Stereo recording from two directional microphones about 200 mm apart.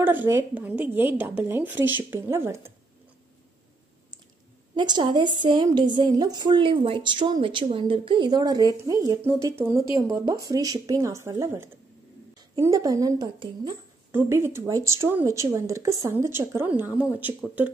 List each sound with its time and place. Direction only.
0.0 s speech: 10° right (ahead or behind)
4.7 s a woman's voice: 20° right (ahead or behind)